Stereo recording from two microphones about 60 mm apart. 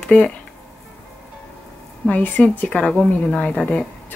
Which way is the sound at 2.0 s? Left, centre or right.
Left.